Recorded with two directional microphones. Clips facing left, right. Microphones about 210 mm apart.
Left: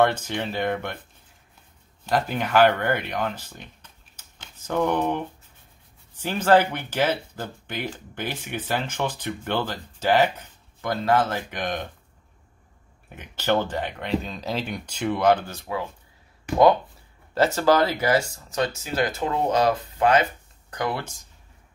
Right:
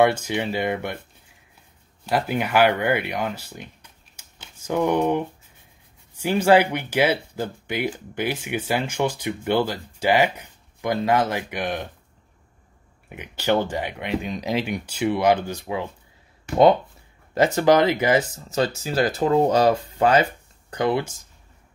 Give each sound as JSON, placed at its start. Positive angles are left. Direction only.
{"t": 0.0, "sound": "speech", "side_deg": -10}
{"t": 2.0, "sound": "speech", "side_deg": -10}
{"t": 13.1, "sound": "speech", "side_deg": -10}
{"t": 17.3, "sound": "speech", "side_deg": -15}